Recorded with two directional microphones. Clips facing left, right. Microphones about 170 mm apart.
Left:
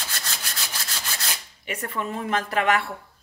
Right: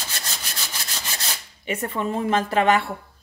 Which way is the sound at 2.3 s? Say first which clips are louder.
Right 3 dB; 30° right (ahead or behind).